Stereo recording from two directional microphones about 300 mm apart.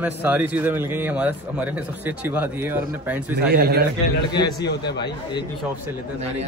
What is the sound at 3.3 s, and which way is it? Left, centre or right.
Speech, right.